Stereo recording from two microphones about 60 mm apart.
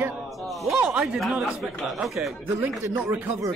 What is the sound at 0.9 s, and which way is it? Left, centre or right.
Speech, centre.